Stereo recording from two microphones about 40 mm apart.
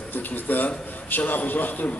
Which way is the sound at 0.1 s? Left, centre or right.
Left.